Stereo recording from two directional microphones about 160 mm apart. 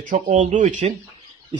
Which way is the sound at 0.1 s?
55° right (ahead or behind).